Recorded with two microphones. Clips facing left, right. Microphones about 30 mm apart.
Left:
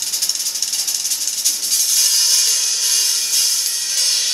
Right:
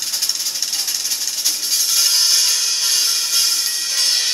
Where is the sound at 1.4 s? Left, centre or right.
Centre.